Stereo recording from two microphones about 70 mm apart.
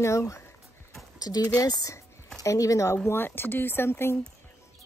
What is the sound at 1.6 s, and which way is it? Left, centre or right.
Speech, left.